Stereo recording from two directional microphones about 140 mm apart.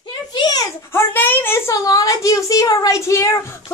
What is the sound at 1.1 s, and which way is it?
A child's voice, 15° left (ahead or behind).